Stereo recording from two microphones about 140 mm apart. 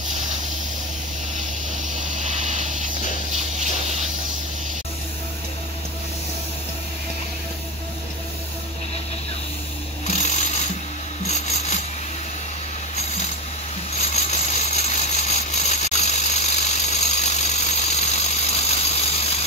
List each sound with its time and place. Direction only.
2.2 s vehicle: 60° right (ahead or behind)
10.0 s sewing machine: 55° left (ahead or behind)
11.2 s rub: 55° left (ahead or behind)
13.9 s a sound: 55° left (ahead or behind)